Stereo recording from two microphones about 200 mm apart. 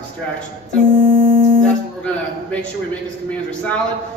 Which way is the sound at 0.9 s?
45° right (ahead or behind).